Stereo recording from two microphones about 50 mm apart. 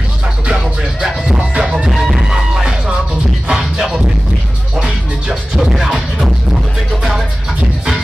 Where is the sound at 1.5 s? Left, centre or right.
Centre.